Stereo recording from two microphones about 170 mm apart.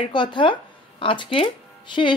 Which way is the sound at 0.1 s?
25° left (ahead or behind).